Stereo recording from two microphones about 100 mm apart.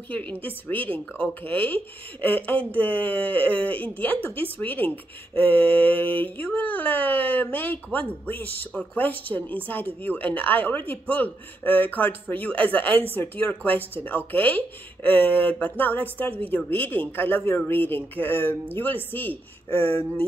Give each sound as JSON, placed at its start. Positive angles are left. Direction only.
{"t": 0.1, "sound": "a man's voice", "side_deg": 15}